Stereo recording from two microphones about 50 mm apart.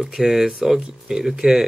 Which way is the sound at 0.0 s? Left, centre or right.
Centre.